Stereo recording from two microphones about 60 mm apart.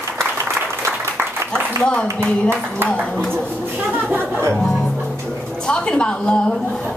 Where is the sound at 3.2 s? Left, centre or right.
Centre.